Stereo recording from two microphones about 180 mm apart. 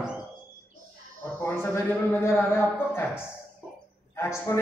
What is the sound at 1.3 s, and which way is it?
A man's voice, 10° left (ahead or behind).